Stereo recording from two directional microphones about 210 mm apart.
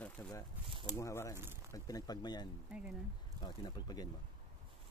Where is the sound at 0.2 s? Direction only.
10° left (ahead or behind).